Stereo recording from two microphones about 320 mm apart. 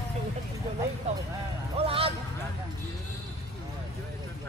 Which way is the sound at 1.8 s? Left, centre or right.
Centre.